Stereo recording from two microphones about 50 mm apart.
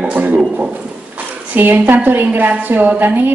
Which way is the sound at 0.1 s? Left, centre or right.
Right.